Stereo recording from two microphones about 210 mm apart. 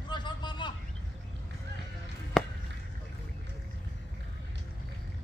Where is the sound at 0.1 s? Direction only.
20° left (ahead or behind).